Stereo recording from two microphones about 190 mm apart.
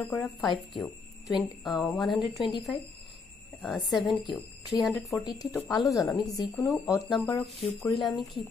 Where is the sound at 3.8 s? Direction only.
Centre (ahead or behind).